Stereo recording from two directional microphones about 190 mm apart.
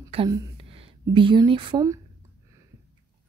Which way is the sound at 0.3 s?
30° right (ahead or behind).